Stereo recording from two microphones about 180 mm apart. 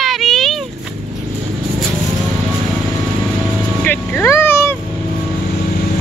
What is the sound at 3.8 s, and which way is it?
Vehicle, 10° left (ahead or behind).